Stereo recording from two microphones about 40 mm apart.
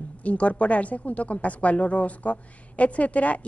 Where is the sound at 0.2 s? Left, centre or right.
Left.